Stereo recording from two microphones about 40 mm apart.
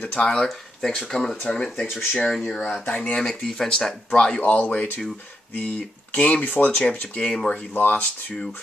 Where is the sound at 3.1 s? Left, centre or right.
Centre.